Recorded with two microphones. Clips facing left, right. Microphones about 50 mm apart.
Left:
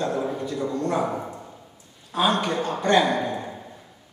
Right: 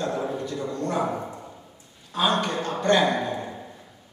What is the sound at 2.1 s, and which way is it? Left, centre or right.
Speech, centre.